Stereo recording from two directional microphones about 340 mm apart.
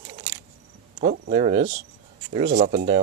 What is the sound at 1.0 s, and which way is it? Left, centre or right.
Speech, right.